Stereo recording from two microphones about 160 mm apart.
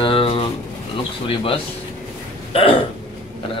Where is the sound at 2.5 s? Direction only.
35° left (ahead or behind).